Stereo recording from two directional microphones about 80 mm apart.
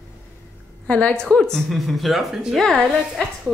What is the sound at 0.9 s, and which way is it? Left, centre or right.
A woman's voice, centre.